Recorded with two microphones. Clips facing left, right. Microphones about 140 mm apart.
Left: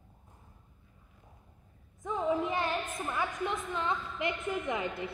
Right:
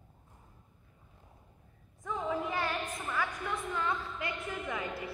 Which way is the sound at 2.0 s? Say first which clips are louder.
Left 4 dB; 15° left (ahead or behind).